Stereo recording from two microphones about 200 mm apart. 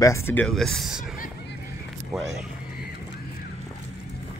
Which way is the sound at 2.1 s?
Centre (ahead or behind).